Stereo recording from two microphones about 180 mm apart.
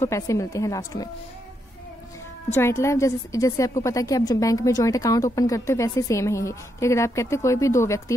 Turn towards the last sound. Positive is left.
turn(degrees=15)  # may be behind; listen again after turning